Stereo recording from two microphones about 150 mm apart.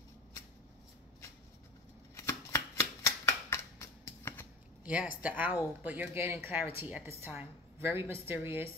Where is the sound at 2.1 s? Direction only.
20° left (ahead or behind).